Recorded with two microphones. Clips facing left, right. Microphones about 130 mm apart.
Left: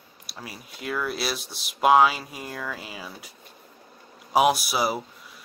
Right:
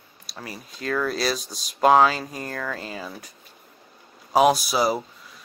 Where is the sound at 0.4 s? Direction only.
10° left (ahead or behind).